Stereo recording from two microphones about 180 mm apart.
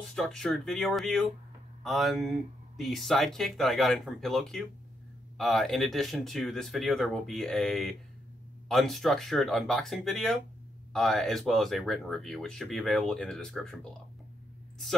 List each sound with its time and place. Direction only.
0.1 s speech: centre (ahead or behind)